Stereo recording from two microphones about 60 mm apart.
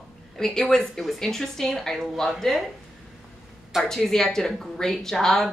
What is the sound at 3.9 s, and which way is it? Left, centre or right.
A woman's voice, centre.